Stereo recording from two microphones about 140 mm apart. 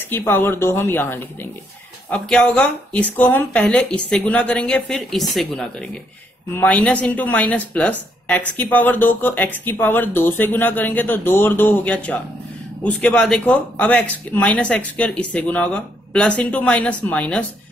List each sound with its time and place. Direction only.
0.1 s speech: 15° left (ahead or behind)
2.0 s speech: 5° left (ahead or behind)